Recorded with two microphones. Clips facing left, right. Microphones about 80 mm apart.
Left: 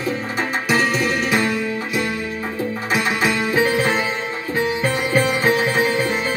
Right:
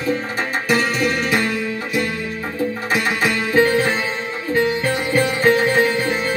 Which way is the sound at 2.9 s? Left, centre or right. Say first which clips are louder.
Left 1 dB; centre.